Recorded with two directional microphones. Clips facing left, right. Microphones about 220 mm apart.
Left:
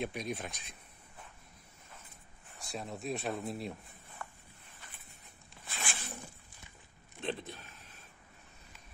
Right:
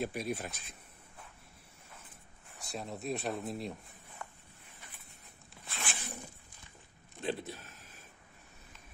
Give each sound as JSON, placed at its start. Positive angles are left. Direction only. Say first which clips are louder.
{"t": 0.0, "sound": "speech", "louder": "right 2 dB", "side_deg": -5}
{"t": 2.5, "sound": "speech", "louder": "even", "side_deg": 0}
{"t": 4.2, "sound": "walk", "louder": "left 1 dB", "side_deg": -20}
{"t": 5.7, "sound": "a sound", "louder": "even", "side_deg": 0}
{"t": 7.2, "sound": "speech", "louder": "right 2 dB", "side_deg": -5}